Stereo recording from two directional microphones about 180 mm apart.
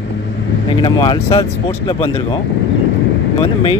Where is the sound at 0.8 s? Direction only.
25° left (ahead or behind).